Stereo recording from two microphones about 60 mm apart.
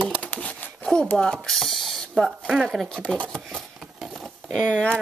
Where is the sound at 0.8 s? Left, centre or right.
Centre.